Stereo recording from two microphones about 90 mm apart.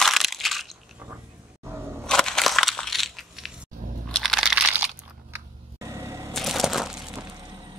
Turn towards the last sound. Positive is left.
turn(degrees=-5)  # may be behind; listen again after turning